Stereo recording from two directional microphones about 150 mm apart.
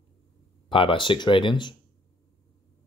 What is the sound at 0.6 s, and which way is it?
Speech, 35° left (ahead or behind).